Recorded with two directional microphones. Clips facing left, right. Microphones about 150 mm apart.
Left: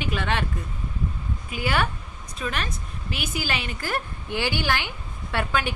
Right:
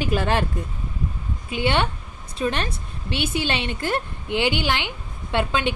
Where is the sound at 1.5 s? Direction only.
25° right (ahead or behind).